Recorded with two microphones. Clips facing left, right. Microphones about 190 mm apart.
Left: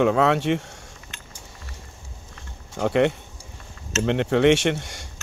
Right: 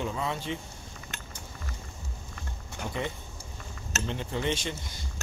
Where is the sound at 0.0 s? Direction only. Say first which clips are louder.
Left 13 dB; 75° left (ahead or behind).